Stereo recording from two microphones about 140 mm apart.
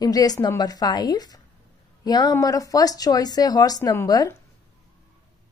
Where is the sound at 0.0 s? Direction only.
25° left (ahead or behind).